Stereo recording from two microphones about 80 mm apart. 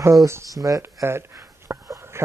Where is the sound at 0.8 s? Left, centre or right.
Right.